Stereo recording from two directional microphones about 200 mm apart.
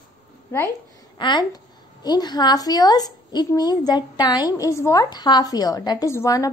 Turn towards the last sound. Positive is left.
turn(degrees=15)  # may be behind; listen again after turning